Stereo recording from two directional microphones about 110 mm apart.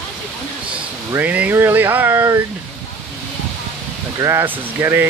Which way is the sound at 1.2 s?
15° right (ahead or behind).